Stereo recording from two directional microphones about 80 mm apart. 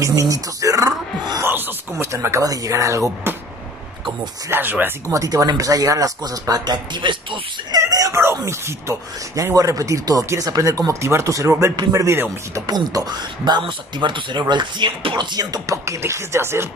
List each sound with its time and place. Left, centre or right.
0.0 s a sound: right
1.4 s a sound: right
2.4 s speech: right
4.5 s speech: right
5.1 s speech: right
7.7 s a sound: right
8.5 s speech: right
9.3 s speech: right
12.6 s speech: right
13.5 s speech: right
15.7 s speech: right